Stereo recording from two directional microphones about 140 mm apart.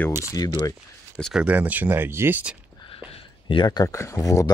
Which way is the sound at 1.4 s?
10° right (ahead or behind).